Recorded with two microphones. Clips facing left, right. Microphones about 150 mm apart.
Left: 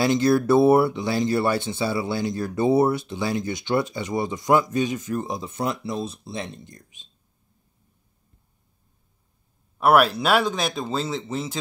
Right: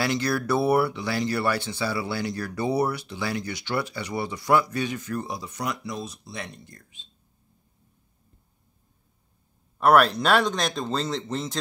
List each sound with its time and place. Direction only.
0.0 s speech: 20° left (ahead or behind)
9.8 s speech: 5° left (ahead or behind)